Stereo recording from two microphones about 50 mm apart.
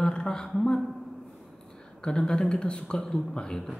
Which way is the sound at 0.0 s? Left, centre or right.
Centre.